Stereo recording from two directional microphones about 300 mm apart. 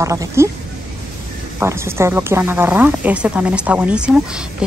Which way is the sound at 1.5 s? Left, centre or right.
Centre.